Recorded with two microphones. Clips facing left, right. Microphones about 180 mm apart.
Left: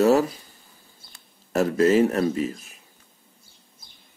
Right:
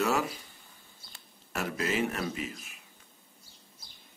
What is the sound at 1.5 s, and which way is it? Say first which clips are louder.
Speech: left 13 dB; 40° left (ahead or behind).